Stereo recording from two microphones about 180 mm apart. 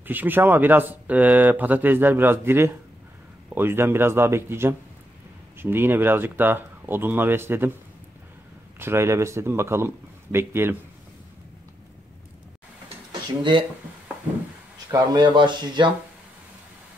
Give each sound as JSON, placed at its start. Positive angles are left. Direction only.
{"t": 0.0, "sound": "speech", "side_deg": -10}
{"t": 8.7, "sound": "speech", "side_deg": -15}
{"t": 13.4, "sound": "speech", "side_deg": -30}
{"t": 14.9, "sound": "speech", "side_deg": -25}